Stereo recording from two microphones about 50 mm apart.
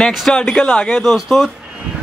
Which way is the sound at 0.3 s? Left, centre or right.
Centre.